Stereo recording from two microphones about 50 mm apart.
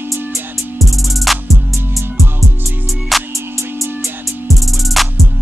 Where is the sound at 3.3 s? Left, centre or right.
Right.